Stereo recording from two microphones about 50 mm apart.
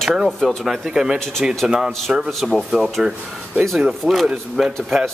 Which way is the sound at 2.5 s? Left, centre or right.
Centre.